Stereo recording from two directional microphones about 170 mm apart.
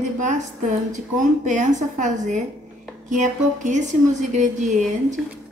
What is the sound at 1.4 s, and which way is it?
Speech, 45° right (ahead or behind).